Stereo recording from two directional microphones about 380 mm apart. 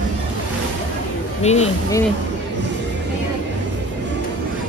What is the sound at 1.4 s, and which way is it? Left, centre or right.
Speech, centre.